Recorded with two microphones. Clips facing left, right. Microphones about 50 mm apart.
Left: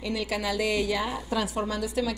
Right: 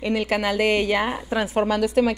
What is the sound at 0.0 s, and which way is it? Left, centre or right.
A woman's voice, right.